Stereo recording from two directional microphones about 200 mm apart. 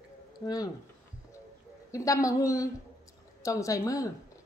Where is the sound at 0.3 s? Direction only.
20° left (ahead or behind).